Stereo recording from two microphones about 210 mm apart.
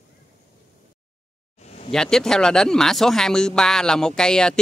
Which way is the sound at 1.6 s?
35° left (ahead or behind).